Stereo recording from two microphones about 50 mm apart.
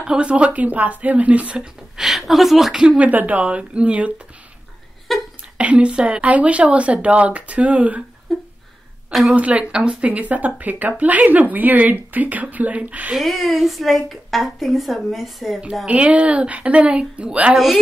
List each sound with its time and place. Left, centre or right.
0.0 s speech: centre
2.0 s a sound: centre
3.0 s speech: right
5.1 s a sound: centre
5.6 s speech: right
8.3 s a sound: centre
9.3 s speech: right
10.0 s a woman's voice: right
13.2 s a woman's voice: centre
15.9 s speech: right